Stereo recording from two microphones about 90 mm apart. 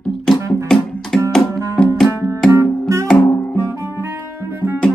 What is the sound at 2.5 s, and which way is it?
Music, 35° right (ahead or behind).